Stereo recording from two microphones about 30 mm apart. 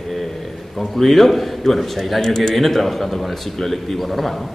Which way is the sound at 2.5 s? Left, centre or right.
Centre.